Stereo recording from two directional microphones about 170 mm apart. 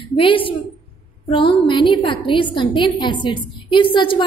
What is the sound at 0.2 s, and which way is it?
A woman's voice, 30° left (ahead or behind).